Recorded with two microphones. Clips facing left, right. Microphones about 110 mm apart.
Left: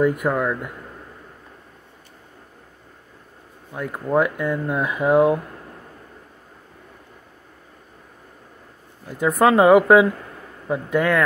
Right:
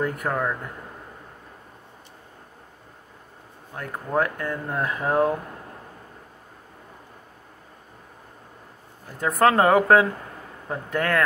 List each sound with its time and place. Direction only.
0.0 s speech: 15° left (ahead or behind)
3.7 s speech: 15° left (ahead or behind)
9.2 s speech: 15° left (ahead or behind)